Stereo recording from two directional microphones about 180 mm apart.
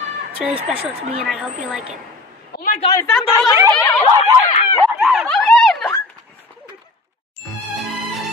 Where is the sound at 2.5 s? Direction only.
50° left (ahead or behind).